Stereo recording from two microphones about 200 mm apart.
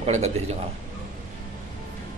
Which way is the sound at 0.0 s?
35° right (ahead or behind).